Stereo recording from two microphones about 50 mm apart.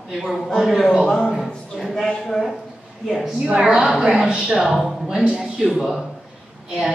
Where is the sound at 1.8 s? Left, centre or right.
Centre.